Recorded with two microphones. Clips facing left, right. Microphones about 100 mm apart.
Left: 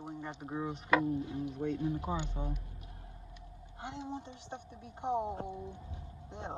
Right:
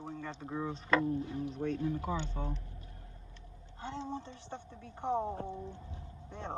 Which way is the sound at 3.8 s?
15° left (ahead or behind).